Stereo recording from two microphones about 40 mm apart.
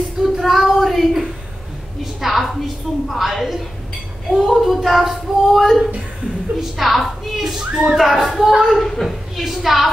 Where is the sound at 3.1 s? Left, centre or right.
Centre.